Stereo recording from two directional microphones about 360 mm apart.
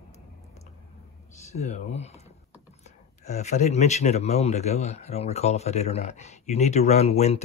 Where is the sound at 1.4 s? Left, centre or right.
Centre.